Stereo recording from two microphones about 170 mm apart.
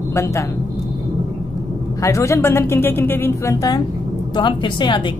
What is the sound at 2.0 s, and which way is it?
A woman's voice, 15° left (ahead or behind).